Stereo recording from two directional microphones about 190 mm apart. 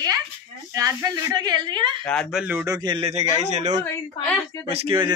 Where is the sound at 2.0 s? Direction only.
5° left (ahead or behind).